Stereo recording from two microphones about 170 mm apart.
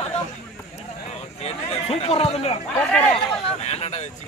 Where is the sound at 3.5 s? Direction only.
40° left (ahead or behind).